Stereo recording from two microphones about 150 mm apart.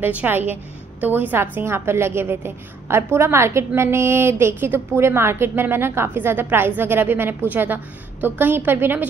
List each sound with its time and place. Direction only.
0.0 s a woman's voice: 10° right (ahead or behind)